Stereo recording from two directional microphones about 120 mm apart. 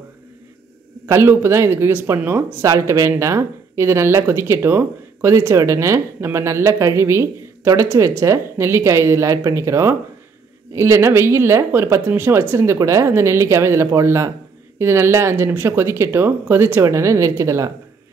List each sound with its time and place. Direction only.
1.0 s speech: 20° right (ahead or behind)